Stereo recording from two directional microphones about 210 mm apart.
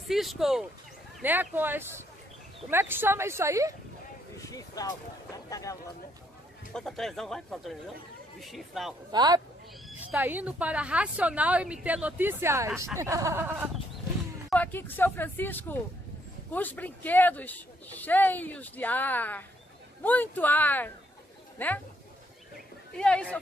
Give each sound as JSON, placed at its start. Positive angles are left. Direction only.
{"t": 0.1, "sound": "speech", "side_deg": 0}
{"t": 4.4, "sound": "speech", "side_deg": 15}
{"t": 6.7, "sound": "speech", "side_deg": 0}
{"t": 9.1, "sound": "speech", "side_deg": -20}
{"t": 9.8, "sound": "speech", "side_deg": -10}
{"t": 14.5, "sound": "speech", "side_deg": 10}
{"t": 22.9, "sound": "speech", "side_deg": 5}